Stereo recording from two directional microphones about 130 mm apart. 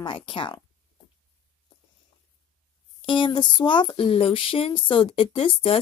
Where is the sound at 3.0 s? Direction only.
40° left (ahead or behind).